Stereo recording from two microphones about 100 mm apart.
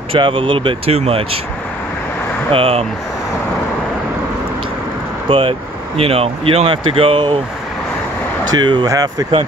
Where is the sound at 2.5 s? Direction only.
70° right (ahead or behind).